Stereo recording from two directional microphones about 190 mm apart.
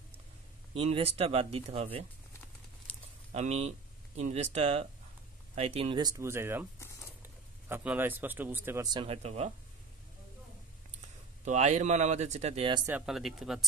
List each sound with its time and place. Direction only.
0.8 s speech: 30° right (ahead or behind)
2.9 s a sound: 5° left (ahead or behind)
3.3 s speech: 35° right (ahead or behind); by 8.8 s 10° right (ahead or behind)
8.8 s speech: 25° right (ahead or behind)
11.4 s speech: 35° right (ahead or behind)
12.8 s speech: 5° right (ahead or behind)